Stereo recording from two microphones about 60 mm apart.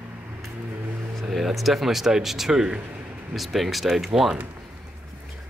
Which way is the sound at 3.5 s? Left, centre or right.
Centre.